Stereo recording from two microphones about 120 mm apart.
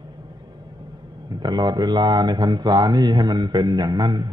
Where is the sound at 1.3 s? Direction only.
35° right (ahead or behind).